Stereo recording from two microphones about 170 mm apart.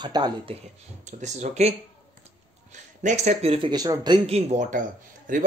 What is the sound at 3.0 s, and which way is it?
A man's voice, 45° right (ahead or behind).